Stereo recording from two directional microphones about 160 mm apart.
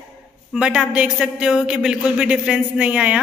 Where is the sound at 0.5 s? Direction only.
5° right (ahead or behind).